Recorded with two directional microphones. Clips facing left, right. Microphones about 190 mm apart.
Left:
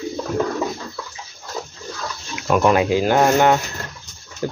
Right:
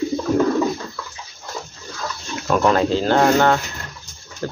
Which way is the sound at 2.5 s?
10° left (ahead or behind).